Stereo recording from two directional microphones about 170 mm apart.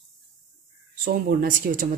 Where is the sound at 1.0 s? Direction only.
55° right (ahead or behind).